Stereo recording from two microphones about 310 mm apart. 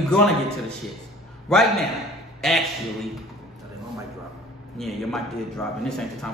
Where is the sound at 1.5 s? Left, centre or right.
Centre.